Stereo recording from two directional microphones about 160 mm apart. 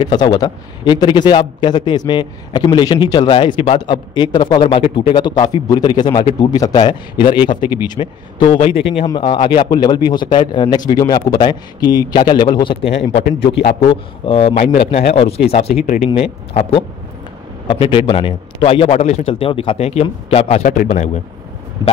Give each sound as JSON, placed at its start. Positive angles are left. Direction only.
{"t": 0.0, "sound": "a man's voice", "side_deg": 25}